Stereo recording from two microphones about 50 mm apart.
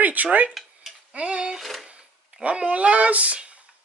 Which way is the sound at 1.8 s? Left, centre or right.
Right.